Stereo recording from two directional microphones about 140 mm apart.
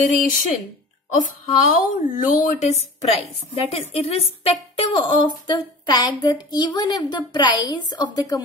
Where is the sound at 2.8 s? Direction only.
50° left (ahead or behind).